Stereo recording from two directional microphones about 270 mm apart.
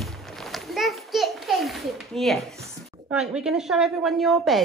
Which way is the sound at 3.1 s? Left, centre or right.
Centre.